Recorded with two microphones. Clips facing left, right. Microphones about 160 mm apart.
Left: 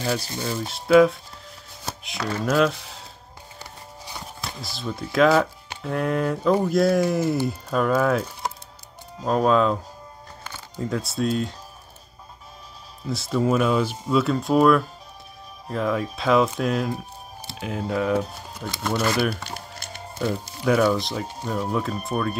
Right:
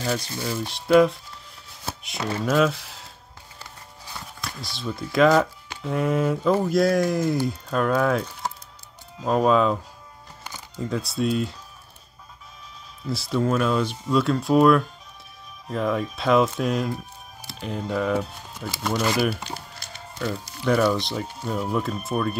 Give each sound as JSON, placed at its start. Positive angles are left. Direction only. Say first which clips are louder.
{"t": 0.4, "sound": "speech", "louder": "even", "side_deg": 0}
{"t": 4.6, "sound": "speech", "louder": "even", "side_deg": 0}
{"t": 10.8, "sound": "speech", "louder": "even", "side_deg": 0}
{"t": 13.1, "sound": "speech", "louder": "left 1 dB", "side_deg": 0}